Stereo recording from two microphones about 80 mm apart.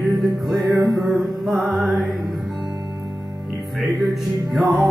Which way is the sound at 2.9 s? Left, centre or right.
Right.